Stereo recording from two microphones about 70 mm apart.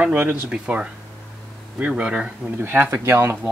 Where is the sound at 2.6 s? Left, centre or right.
Right.